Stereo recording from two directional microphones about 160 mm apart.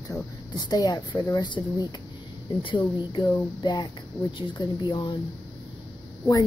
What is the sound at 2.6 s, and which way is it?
A woman's voice, 30° left (ahead or behind).